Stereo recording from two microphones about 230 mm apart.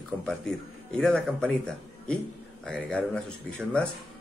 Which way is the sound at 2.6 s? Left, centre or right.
Centre.